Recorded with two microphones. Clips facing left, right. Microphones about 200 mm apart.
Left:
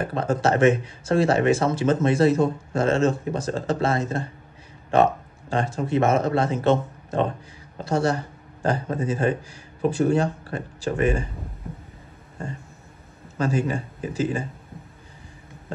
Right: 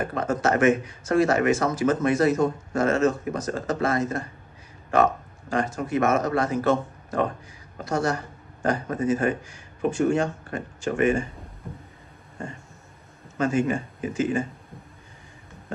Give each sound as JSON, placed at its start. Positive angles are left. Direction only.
{"t": 0.0, "sound": "speech", "side_deg": 30}
{"t": 13.4, "sound": "speech", "side_deg": 35}